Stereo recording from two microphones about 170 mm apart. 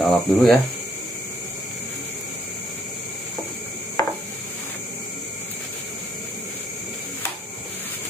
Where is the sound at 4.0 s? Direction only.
20° left (ahead or behind).